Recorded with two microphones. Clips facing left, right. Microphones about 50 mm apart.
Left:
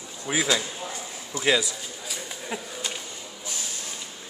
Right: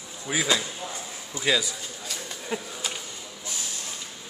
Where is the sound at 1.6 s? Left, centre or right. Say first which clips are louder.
Left 1 dB; centre.